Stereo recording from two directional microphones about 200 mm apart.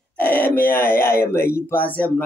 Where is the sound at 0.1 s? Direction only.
10° left (ahead or behind).